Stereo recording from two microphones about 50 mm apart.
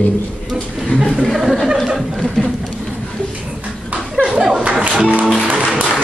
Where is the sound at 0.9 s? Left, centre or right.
Centre.